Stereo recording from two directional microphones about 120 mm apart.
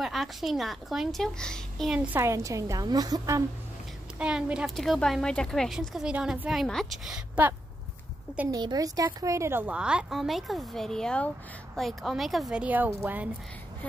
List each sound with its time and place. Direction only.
0.0 s a child's voice: centre (ahead or behind)
2.1 s a woman's voice: 25° right (ahead or behind)
4.2 s speech: 10° right (ahead or behind)
5.8 s a woman's voice: 10° right (ahead or behind)
6.5 s speech: centre (ahead or behind)
8.5 s a woman's voice: 35° right (ahead or behind); by 13.3 s 15° right (ahead or behind)